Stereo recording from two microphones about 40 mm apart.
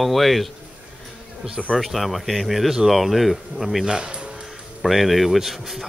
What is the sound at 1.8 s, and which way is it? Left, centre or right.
Speech, centre.